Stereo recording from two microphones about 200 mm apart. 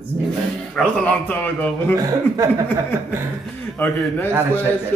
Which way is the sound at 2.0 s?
15° right (ahead or behind).